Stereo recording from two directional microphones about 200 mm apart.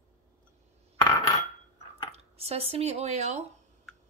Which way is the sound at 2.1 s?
30° right (ahead or behind).